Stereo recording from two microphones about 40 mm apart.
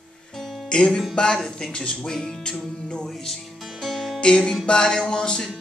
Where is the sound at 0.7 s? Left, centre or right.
Centre.